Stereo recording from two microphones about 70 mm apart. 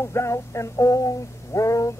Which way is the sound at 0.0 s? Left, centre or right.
Left.